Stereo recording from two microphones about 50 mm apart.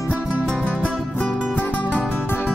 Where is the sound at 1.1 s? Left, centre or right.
Left.